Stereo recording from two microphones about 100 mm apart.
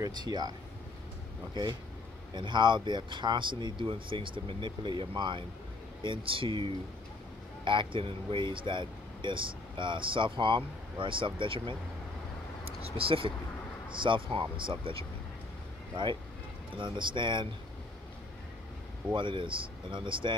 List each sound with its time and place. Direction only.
0.0 s speech: 45° right (ahead or behind)
12.8 s speech: 65° right (ahead or behind)
16.7 s speech: 55° right (ahead or behind)
19.1 s speech: 55° right (ahead or behind)